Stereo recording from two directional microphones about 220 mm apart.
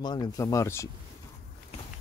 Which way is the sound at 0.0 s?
20° left (ahead or behind).